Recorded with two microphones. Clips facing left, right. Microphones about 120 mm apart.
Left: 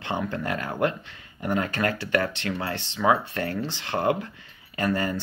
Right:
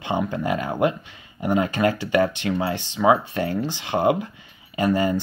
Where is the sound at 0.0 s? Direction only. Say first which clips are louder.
Right 4 dB; 15° right (ahead or behind).